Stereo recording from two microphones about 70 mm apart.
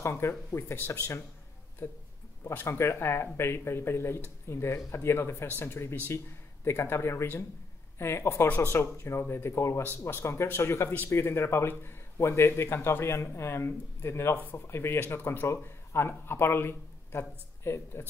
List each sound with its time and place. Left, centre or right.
0.1 s a man's voice: left